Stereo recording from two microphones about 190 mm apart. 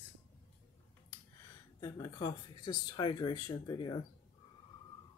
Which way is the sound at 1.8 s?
15° left (ahead or behind).